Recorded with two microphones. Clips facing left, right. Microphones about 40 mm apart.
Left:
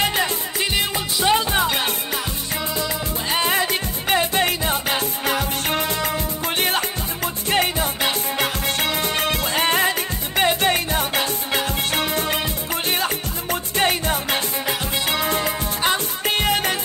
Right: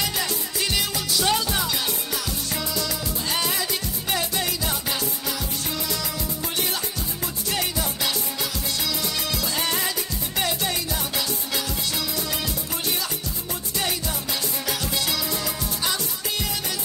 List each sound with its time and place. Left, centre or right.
0.0 s music: left